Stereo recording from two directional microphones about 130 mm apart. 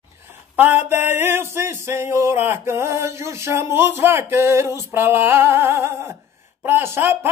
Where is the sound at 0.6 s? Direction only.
15° right (ahead or behind).